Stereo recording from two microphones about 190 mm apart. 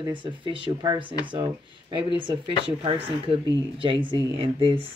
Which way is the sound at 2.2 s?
25° right (ahead or behind).